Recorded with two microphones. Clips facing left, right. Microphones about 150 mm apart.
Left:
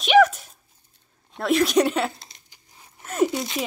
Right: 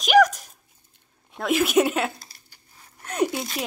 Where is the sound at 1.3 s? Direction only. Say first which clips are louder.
Left 1 dB; 5° right (ahead or behind).